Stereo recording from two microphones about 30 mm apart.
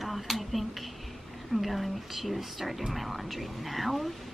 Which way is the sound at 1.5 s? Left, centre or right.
Centre.